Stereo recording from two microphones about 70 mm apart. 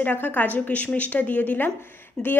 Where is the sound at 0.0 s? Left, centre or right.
Left.